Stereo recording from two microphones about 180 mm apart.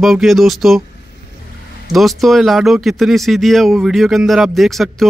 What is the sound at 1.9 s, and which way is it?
Speech, centre (ahead or behind).